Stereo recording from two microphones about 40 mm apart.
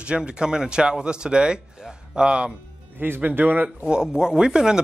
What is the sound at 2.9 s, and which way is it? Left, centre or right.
Speech, right.